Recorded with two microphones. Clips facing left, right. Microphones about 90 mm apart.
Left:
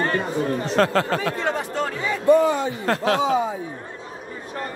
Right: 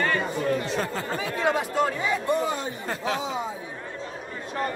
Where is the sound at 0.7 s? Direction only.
90° left.